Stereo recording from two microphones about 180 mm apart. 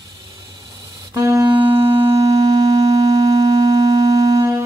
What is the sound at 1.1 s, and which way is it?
Music, 20° right (ahead or behind).